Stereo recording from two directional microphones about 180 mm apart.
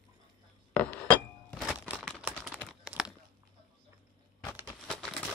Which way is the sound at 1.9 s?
5° left (ahead or behind).